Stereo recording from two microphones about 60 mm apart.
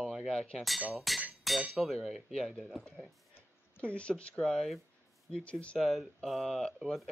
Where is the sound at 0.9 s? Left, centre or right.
Centre.